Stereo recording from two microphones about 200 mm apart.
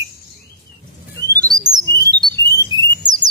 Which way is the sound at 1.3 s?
20° right (ahead or behind).